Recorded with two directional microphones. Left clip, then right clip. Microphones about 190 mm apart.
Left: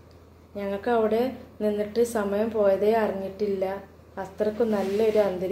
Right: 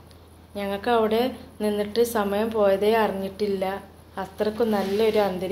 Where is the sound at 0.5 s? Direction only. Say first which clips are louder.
Right 2 dB; centre (ahead or behind).